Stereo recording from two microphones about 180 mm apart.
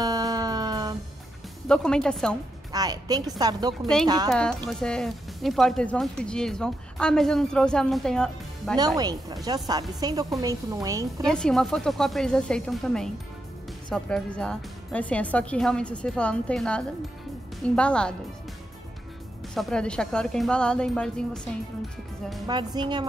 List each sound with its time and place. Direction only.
0.0 s music: 20° right (ahead or behind)
1.7 s speech: 5° left (ahead or behind)
2.7 s speech: 20° right (ahead or behind)
4.3 s speech: 5° left (ahead or behind)
8.7 s speech: 20° right (ahead or behind)
11.2 s speech: 5° left (ahead or behind)
19.5 s speech: 5° left (ahead or behind)
22.5 s speech: 25° right (ahead or behind)